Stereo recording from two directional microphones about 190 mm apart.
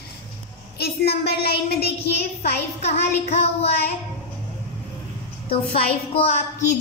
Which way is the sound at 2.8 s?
35° left (ahead or behind).